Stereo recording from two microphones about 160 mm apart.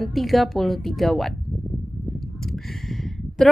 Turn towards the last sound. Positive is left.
turn(degrees=0)  # may be behind; listen again after turning